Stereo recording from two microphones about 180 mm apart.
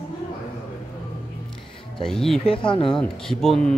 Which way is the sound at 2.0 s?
Centre (ahead or behind).